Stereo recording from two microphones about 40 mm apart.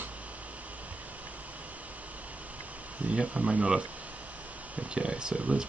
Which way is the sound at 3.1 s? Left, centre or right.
Right.